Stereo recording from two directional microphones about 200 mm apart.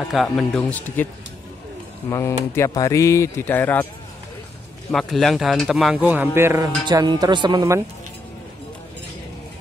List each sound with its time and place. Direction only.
0.1 s speech: centre (ahead or behind)
2.0 s speech: 15° left (ahead or behind)
4.9 s speech: centre (ahead or behind); by 7.8 s 20° right (ahead or behind)